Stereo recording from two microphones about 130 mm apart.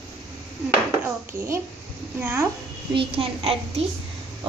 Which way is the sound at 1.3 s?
20° right (ahead or behind).